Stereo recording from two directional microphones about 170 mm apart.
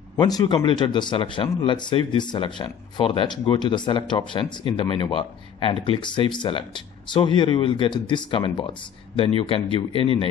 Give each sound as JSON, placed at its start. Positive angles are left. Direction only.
{"t": 0.2, "sound": "speech", "side_deg": 25}